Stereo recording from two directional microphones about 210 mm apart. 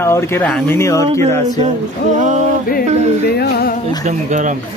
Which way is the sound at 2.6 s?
45° left (ahead or behind).